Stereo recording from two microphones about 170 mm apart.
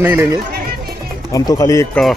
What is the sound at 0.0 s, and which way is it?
Speech, 15° right (ahead or behind).